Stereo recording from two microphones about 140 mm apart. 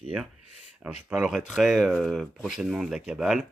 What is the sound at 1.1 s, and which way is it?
Speech, 5° right (ahead or behind).